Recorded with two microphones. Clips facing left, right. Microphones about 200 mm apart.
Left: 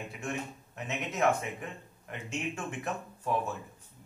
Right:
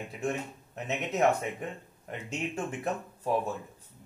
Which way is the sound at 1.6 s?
35° right (ahead or behind).